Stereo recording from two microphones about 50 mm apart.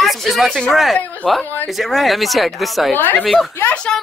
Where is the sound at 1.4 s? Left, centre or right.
Left.